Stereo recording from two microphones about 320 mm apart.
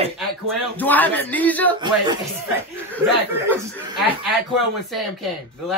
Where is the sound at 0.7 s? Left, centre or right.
Centre.